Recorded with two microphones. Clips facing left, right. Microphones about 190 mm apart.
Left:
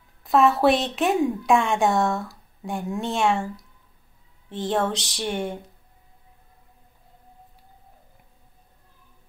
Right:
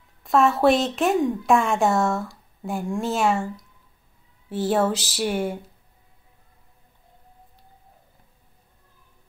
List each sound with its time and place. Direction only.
0.2 s a woman's voice: centre (ahead or behind)
4.5 s a woman's voice: 5° right (ahead or behind)